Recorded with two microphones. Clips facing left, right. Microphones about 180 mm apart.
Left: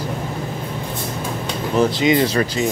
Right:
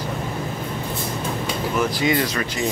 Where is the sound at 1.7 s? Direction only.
25° left (ahead or behind).